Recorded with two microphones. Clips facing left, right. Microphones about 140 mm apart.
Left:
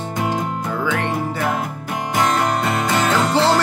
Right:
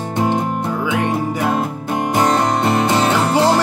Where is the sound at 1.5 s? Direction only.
25° right (ahead or behind).